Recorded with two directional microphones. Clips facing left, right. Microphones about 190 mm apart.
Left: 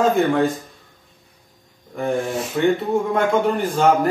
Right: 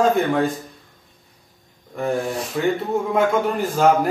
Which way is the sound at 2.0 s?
Centre (ahead or behind).